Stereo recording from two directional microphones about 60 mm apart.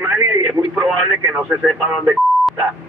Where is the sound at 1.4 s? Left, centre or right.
Centre.